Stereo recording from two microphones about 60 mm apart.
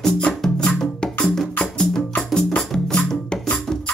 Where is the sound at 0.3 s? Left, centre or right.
Centre.